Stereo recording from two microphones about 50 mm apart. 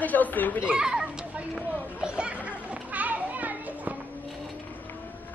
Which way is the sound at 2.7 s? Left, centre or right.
Right.